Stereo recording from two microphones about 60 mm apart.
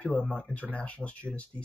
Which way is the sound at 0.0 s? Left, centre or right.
Left.